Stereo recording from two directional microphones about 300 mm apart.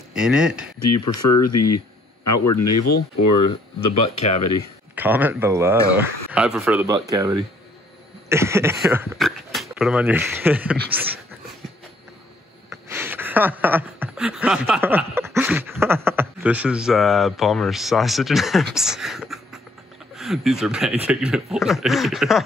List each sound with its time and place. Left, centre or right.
0.1 s speech: centre
0.8 s speech: left
4.3 s speech: left
4.9 s speech: centre
12.6 s a sound: centre
20.2 s speech: centre